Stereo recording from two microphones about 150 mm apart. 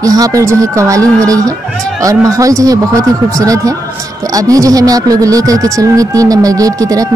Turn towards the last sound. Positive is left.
turn(degrees=-25)  # may be behind; listen again after turning